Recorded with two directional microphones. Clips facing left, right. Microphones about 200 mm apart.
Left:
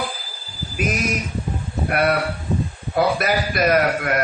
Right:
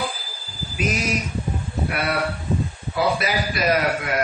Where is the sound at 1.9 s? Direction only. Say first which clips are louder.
Left 5 dB; 50° left (ahead or behind).